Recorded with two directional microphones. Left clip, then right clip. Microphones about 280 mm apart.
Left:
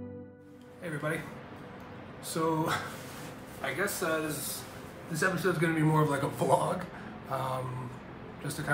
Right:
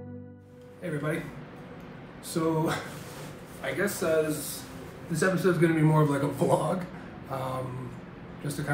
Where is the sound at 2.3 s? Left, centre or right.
Centre.